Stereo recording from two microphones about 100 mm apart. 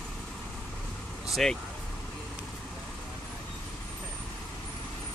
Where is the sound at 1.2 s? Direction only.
Centre (ahead or behind).